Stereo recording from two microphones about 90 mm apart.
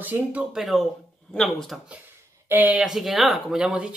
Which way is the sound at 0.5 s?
Centre (ahead or behind).